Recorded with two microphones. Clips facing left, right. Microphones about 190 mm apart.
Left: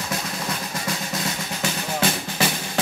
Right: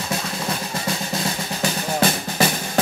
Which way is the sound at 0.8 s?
30° right (ahead or behind).